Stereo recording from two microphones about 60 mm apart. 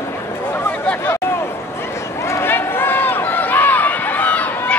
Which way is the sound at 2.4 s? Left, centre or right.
Left.